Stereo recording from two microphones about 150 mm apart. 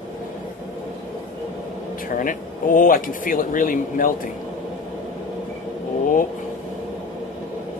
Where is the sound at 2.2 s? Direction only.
65° left (ahead or behind).